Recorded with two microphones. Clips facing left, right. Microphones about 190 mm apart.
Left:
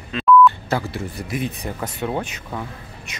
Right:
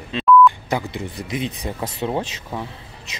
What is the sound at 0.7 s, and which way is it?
Speech, 15° right (ahead or behind).